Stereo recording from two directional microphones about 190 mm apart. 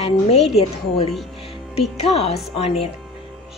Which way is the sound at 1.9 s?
30° left (ahead or behind).